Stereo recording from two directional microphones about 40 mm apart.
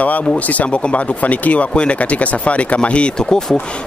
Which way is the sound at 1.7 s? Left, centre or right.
Left.